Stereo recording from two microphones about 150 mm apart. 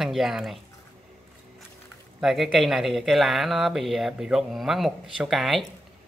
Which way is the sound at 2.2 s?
Centre (ahead or behind).